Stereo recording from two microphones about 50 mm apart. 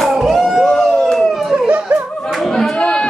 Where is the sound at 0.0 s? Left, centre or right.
Centre.